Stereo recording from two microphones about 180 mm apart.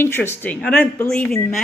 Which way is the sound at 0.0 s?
15° left (ahead or behind).